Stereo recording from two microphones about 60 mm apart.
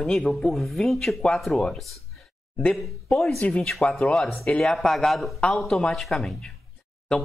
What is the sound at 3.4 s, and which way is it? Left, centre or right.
Speech, left.